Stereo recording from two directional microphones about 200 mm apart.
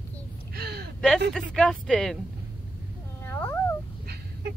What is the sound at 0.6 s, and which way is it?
Gasp, 50° right (ahead or behind).